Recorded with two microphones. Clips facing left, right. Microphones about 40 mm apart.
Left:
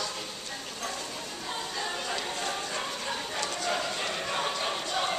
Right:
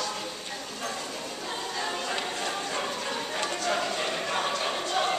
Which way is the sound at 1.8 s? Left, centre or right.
Centre.